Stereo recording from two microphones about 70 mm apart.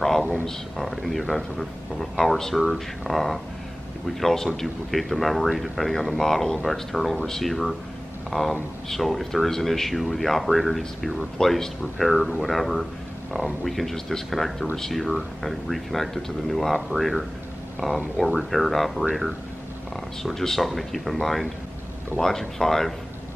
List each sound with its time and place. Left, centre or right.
0.2 s speech: centre
0.7 s speech: centre
20.2 s speech: centre